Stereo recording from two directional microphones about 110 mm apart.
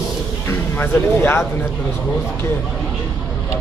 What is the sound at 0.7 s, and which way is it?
Speech, 20° left (ahead or behind).